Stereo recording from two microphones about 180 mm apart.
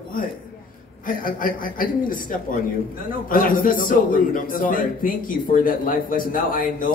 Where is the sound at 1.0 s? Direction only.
50° left (ahead or behind).